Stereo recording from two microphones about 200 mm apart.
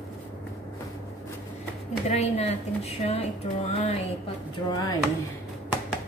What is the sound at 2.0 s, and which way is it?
Speech, 35° left (ahead or behind).